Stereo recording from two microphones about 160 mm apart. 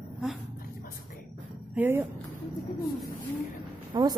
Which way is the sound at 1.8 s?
10° right (ahead or behind).